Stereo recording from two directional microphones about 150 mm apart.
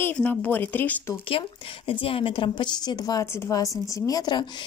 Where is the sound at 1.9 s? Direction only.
35° left (ahead or behind).